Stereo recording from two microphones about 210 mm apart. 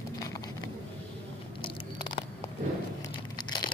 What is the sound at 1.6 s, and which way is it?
Biting, 25° left (ahead or behind).